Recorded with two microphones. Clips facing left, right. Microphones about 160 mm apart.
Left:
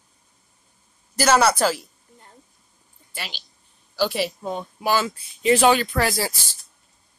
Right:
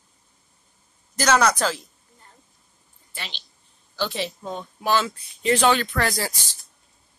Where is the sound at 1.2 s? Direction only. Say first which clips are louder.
Left 2 dB; 10° left (ahead or behind).